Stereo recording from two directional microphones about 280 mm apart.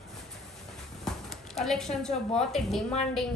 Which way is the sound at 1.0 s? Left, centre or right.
Centre.